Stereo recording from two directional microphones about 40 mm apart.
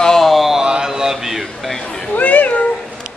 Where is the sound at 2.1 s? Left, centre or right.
Left.